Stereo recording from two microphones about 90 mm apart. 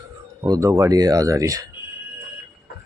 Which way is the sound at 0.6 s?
35° right (ahead or behind).